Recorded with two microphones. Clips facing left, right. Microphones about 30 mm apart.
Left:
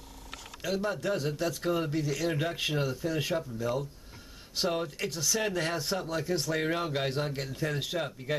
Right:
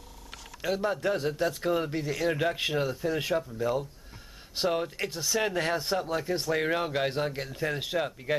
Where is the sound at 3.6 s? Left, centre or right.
Centre.